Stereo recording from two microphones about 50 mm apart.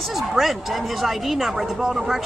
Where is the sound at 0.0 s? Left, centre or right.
Centre.